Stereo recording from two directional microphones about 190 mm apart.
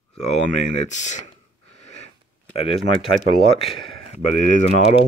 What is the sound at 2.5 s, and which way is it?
Speech, 30° left (ahead or behind).